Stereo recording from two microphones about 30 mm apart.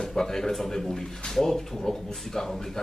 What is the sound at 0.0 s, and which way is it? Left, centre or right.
A man's voice, centre.